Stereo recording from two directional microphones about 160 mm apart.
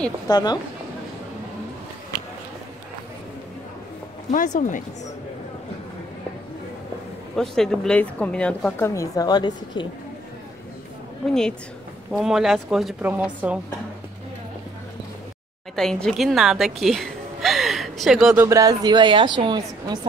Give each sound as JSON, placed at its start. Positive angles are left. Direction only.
{"t": 0.3, "sound": "a woman's voice", "side_deg": 25}
{"t": 4.3, "sound": "speech", "side_deg": 50}
{"t": 7.3, "sound": "a woman's voice", "side_deg": 5}
{"t": 12.1, "sound": "speech", "side_deg": -5}
{"t": 15.7, "sound": "a woman's voice", "side_deg": 5}